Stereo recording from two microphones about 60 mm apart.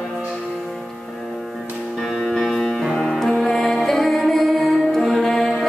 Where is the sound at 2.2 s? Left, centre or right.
Centre.